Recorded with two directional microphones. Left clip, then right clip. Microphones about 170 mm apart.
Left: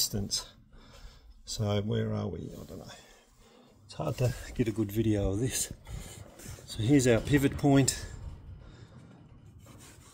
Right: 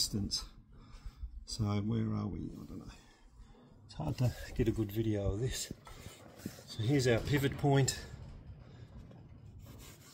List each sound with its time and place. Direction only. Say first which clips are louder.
0.0 s speech: left 4 dB; 35° left (ahead or behind)
1.5 s speech: left 7 dB; 35° left (ahead or behind)
3.9 s speech: left 7 dB; 30° left (ahead or behind)
4.7 s speech: left 6 dB; 45° left (ahead or behind)
6.7 s speech: left 6 dB; 45° left (ahead or behind)